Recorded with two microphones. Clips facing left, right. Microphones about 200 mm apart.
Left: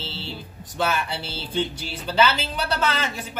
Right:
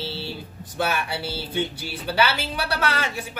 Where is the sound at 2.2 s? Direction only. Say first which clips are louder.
Left 2 dB; 10° right (ahead or behind).